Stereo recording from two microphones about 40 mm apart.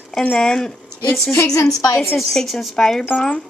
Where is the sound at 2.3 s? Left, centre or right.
Centre.